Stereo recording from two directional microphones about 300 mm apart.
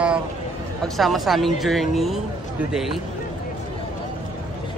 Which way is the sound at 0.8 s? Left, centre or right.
Centre.